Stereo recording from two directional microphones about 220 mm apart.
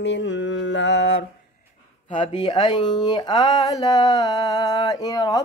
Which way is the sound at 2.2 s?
20° left (ahead or behind).